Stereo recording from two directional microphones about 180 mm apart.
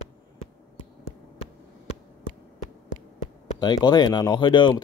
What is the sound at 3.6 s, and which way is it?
Speech, 25° left (ahead or behind).